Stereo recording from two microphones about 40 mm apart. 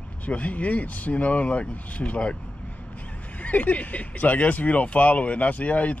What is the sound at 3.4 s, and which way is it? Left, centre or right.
Speech, left.